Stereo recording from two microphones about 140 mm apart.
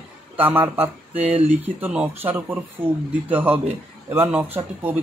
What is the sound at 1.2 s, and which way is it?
Speech, 45° right (ahead or behind).